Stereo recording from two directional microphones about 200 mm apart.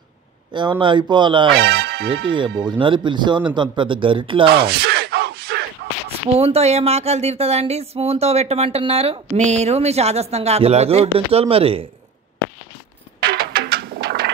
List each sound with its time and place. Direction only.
0.5 s speech: 25° right (ahead or behind)
1.5 s speech: 55° right (ahead or behind)
2.2 s speech: 25° right (ahead or behind)
4.5 s music: 50° right (ahead or behind)
6.0 s speech: 30° right (ahead or behind)
13.2 s music: 50° right (ahead or behind)